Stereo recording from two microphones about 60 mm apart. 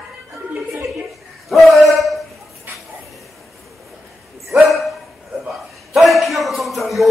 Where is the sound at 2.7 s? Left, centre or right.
Right.